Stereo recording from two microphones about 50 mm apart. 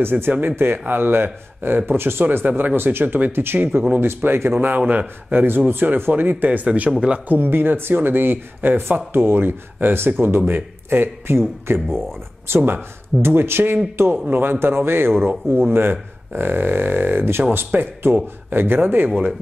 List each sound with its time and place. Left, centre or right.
0.0 s speech: right
7.3 s speech: right
17.6 s speech: right